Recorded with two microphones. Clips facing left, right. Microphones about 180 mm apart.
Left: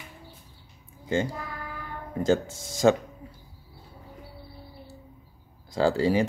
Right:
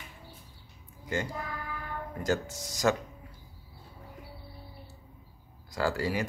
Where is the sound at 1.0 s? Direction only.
25° left (ahead or behind).